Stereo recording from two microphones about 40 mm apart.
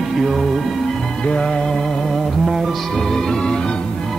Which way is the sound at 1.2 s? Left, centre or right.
Centre.